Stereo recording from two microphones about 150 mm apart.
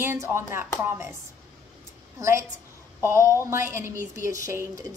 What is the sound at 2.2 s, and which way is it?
A woman's voice, 20° right (ahead or behind).